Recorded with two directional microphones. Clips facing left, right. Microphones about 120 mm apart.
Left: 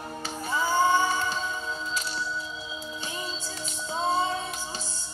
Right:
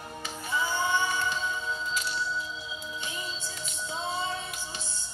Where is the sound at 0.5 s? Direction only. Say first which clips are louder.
Left 5 dB; 40° left (ahead or behind).